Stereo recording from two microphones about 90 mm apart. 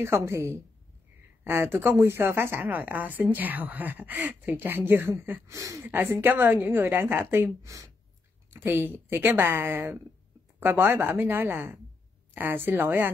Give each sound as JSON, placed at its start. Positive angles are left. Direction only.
{"t": 0.0, "sound": "a woman's voice", "side_deg": -30}
{"t": 5.9, "sound": "speech", "side_deg": -25}
{"t": 8.5, "sound": "speech", "side_deg": -25}